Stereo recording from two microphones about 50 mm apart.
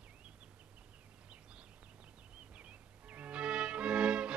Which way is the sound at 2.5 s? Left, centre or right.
Right.